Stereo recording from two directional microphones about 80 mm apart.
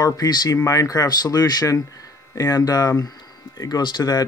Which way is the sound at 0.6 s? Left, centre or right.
Left.